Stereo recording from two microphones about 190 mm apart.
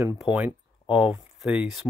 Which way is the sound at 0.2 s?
10° right (ahead or behind).